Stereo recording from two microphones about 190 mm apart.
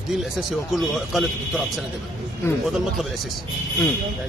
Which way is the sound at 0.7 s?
Centre (ahead or behind).